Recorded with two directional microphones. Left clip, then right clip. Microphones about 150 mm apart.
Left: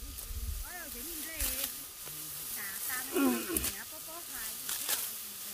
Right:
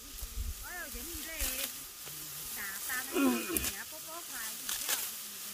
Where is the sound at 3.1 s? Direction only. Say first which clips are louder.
Even; 10° left (ahead or behind).